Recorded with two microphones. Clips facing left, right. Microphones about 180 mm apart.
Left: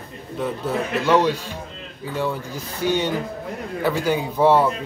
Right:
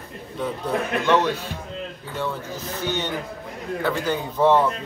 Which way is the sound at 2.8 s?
10° left (ahead or behind).